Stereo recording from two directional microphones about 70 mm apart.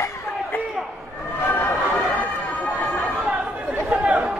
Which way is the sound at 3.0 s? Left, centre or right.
Centre.